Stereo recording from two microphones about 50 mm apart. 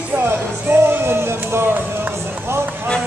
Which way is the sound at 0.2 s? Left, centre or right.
Right.